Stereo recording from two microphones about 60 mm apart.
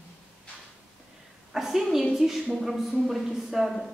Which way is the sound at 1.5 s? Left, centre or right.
Centre.